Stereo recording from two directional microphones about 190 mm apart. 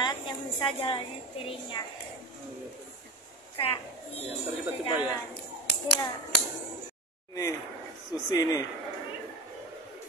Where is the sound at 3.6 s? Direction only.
30° left (ahead or behind).